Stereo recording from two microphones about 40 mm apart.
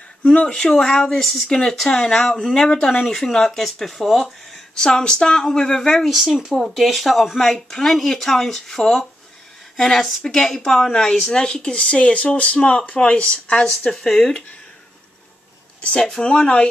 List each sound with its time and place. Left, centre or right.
0.2 s speech: left
0.5 s speech: centre
4.8 s speech: centre
6.0 s speech: centre
6.5 s a woman's voice: centre; by 12.5 s left
12.5 s speech: left
12.8 s speech: left
14.0 s speech: centre
15.8 s speech: left